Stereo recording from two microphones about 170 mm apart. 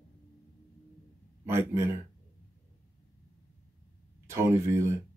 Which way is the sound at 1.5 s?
15° right (ahead or behind).